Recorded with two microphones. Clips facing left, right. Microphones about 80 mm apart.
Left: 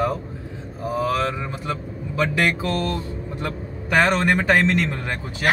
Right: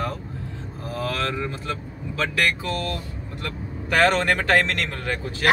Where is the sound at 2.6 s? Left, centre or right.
Left; by 5.1 s centre.